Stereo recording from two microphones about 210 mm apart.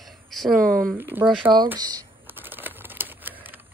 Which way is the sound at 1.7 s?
20° right (ahead or behind).